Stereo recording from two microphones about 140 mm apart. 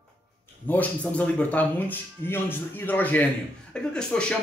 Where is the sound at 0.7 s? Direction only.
10° left (ahead or behind).